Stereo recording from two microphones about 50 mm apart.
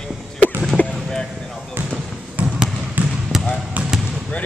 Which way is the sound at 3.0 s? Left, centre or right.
Right.